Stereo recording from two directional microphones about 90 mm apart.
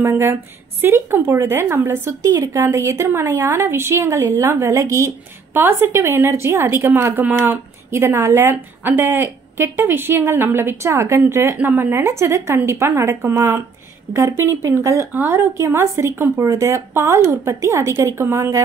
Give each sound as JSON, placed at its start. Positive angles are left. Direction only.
{"t": 0.0, "sound": "a woman's voice", "side_deg": -30}